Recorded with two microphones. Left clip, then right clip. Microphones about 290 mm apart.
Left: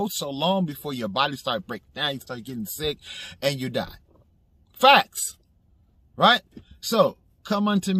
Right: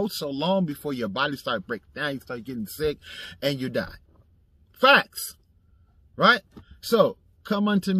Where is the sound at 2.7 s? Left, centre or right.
Left.